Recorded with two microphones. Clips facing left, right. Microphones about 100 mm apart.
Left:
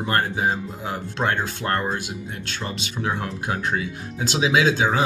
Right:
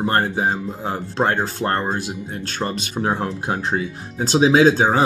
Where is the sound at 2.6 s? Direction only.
45° right (ahead or behind).